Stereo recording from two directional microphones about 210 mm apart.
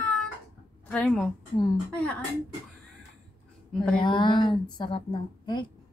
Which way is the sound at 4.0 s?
25° left (ahead or behind).